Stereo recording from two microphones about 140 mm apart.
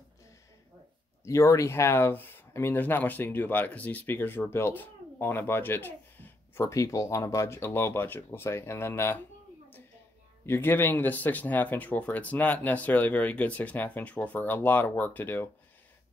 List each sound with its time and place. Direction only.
1.2 s speech: 20° left (ahead or behind)
10.4 s speech: 15° left (ahead or behind)